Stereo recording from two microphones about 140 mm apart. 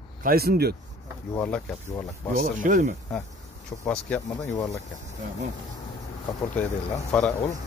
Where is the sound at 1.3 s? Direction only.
10° left (ahead or behind).